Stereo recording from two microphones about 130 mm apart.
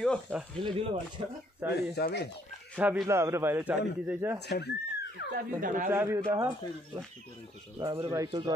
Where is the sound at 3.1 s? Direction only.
20° right (ahead or behind).